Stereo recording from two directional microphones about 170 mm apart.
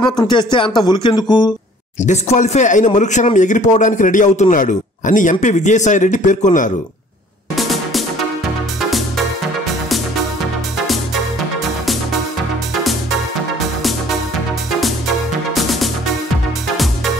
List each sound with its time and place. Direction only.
0.3 s speech: 30° left (ahead or behind)
2.0 s speech: 45° left (ahead or behind)
7.5 s music: centre (ahead or behind)
14.8 s music: centre (ahead or behind)